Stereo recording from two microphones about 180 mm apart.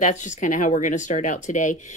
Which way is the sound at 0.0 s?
45° left (ahead or behind).